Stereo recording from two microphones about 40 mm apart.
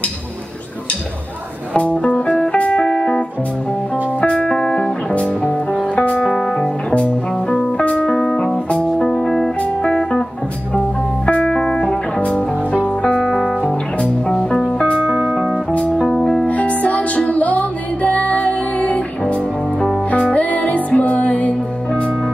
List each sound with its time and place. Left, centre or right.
1.7 s music: left
4.5 s music: centre
5.1 s music: left
6.4 s music: centre
6.9 s music: left
8.1 s music: centre
8.4 s music: left
9.0 s music: centre
9.8 s music: left
11.3 s music: centre
16.4 s music: left
20.3 s music: left